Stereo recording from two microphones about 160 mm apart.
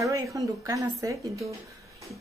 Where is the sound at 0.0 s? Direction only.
20° right (ahead or behind).